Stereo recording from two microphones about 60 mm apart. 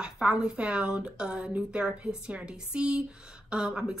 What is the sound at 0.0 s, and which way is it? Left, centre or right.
A woman's voice, centre.